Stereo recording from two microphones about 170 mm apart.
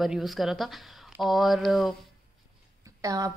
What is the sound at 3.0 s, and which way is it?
Speech, 20° right (ahead or behind).